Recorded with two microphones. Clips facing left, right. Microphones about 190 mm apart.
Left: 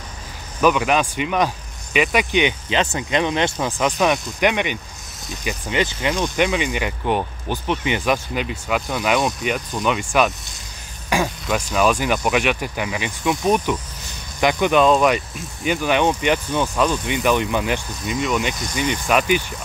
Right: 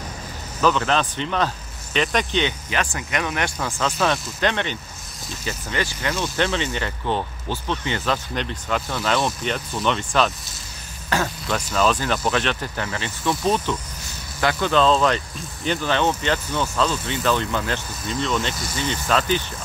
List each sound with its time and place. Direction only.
0.6 s speech: 10° left (ahead or behind)